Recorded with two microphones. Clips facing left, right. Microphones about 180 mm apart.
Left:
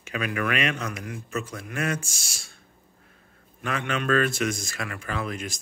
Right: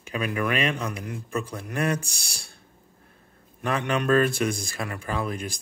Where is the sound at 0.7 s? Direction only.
35° right (ahead or behind).